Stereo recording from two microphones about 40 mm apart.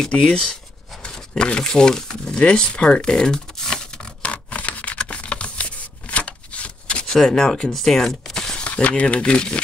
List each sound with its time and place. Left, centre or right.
0.2 s speech: left
4.2 s a sound: left
7.2 s speech: centre
8.6 s speech: left